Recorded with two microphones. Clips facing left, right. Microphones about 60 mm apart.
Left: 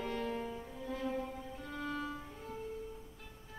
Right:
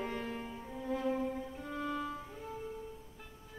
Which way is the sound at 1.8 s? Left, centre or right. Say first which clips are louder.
Right 2 dB; centre.